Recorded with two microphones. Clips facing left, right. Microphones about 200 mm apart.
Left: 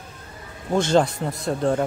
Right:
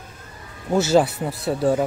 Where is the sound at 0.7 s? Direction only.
5° right (ahead or behind).